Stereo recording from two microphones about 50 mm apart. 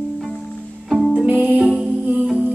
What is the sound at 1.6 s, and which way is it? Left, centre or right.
Music, right.